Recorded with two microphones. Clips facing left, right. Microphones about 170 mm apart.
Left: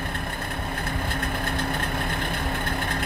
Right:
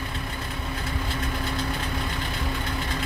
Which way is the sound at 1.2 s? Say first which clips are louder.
Even; 55° left (ahead or behind).